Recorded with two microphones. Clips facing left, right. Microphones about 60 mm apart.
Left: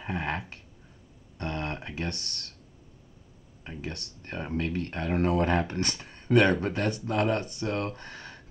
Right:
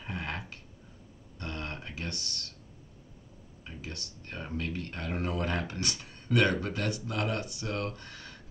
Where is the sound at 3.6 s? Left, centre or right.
Left.